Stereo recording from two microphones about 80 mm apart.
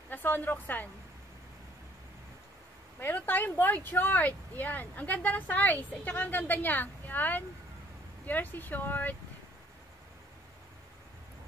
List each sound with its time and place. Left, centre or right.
0.1 s speech: left
3.2 s speech: left